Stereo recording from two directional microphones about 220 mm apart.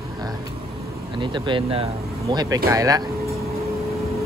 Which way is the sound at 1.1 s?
20° right (ahead or behind).